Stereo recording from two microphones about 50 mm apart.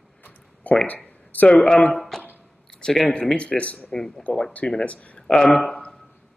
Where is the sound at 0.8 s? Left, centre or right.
Left.